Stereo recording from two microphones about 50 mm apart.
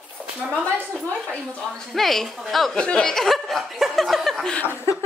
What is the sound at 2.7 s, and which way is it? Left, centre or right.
Speech, centre.